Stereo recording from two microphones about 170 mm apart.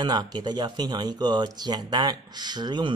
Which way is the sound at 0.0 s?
25° right (ahead or behind).